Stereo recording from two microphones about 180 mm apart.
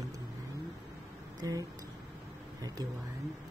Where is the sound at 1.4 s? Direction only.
20° right (ahead or behind).